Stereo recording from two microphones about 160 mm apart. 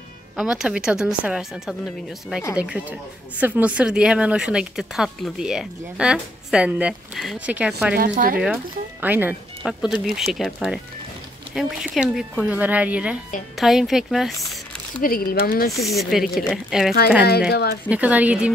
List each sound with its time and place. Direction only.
0.4 s speech: 5° right (ahead or behind)
7.9 s speech: 65° right (ahead or behind)
9.0 s speech: 10° right (ahead or behind)
15.0 s speech: 65° left (ahead or behind)
15.7 s speech: centre (ahead or behind)
17.5 s speech: 90° left
17.8 s speech: 10° right (ahead or behind)